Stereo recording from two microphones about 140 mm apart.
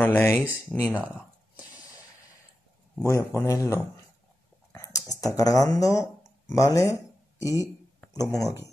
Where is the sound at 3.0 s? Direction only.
20° left (ahead or behind).